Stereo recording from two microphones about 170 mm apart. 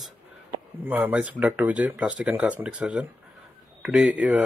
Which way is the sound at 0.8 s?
10° right (ahead or behind).